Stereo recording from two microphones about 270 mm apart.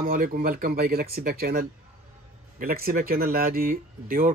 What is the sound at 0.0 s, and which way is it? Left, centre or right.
Speech, right.